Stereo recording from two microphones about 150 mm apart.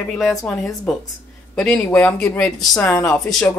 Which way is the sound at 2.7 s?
20° left (ahead or behind).